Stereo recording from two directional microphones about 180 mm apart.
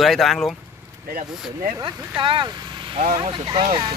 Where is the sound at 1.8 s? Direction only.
25° right (ahead or behind).